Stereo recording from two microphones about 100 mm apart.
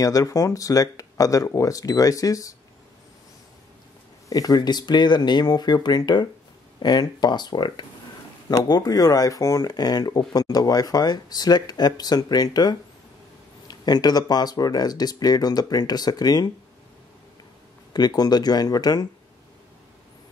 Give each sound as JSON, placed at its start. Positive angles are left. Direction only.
{"t": 0.0, "sound": "speech", "side_deg": 35}
{"t": 4.3, "sound": "speech", "side_deg": 40}
{"t": 17.9, "sound": "speech", "side_deg": 40}